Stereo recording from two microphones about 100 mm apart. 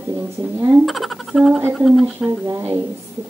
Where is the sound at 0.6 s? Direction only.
25° right (ahead or behind).